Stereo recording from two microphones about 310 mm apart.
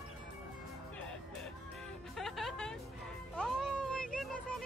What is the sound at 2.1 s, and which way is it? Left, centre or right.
Music, centre.